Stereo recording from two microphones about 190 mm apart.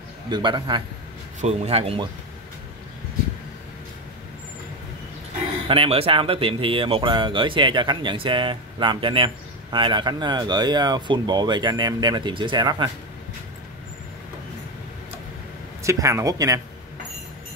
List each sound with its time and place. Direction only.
0.3 s speech: 25° right (ahead or behind)
5.7 s speech: 30° right (ahead or behind)
15.8 s speech: 15° right (ahead or behind)